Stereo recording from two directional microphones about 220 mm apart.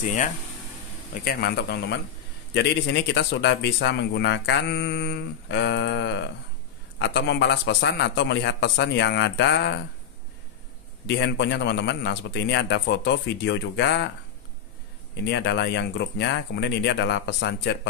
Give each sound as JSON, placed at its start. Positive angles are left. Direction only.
{"t": 1.2, "sound": "speech", "side_deg": 45}
{"t": 11.1, "sound": "speech", "side_deg": 50}
{"t": 15.2, "sound": "speech", "side_deg": 50}